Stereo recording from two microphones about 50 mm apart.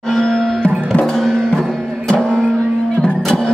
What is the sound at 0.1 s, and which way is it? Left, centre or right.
Music, centre.